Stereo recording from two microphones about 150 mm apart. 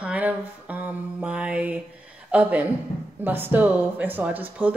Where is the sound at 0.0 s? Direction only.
10° right (ahead or behind).